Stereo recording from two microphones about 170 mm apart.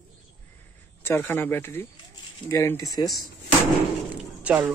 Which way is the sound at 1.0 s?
15° left (ahead or behind).